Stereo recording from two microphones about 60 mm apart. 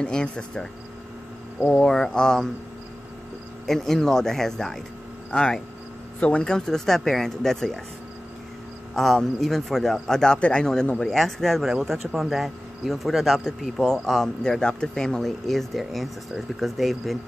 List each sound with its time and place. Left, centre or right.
0.0 s speech: centre
3.6 s speech: centre
8.9 s speech: centre
11.6 s speech: centre